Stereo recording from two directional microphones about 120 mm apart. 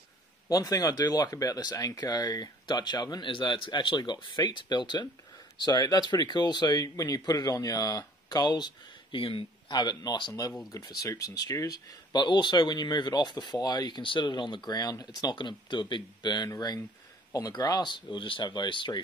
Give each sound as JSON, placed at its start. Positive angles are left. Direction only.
{"t": 0.5, "sound": "speech", "side_deg": 30}
{"t": 9.8, "sound": "speech", "side_deg": 35}